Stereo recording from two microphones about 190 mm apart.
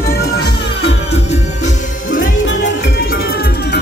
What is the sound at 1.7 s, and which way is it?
Music, 45° left (ahead or behind).